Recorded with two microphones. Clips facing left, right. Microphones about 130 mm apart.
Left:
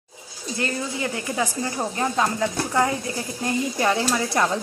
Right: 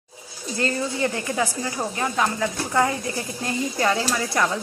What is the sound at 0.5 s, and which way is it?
A woman's voice, 15° left (ahead or behind).